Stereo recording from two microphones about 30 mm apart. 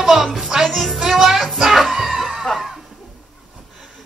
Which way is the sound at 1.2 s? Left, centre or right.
Centre.